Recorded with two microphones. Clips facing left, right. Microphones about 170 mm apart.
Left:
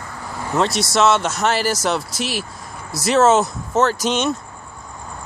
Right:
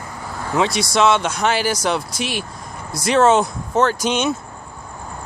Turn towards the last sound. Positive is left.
turn(degrees=0)  # may be behind; listen again after turning